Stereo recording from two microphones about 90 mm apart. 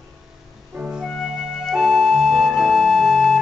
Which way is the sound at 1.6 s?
Centre (ahead or behind).